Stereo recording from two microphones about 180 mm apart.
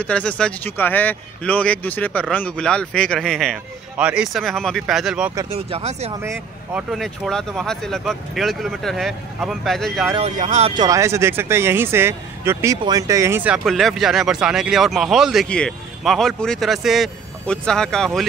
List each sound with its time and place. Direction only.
0.0 s speech: 5° left (ahead or behind)
5.5 s speech: 35° right (ahead or behind)
6.2 s speech: 15° right (ahead or behind)
6.9 s speech: centre (ahead or behind)
10.3 s speech: 40° right (ahead or behind)
10.8 s speech: 15° right (ahead or behind)
13.7 s speech: centre (ahead or behind)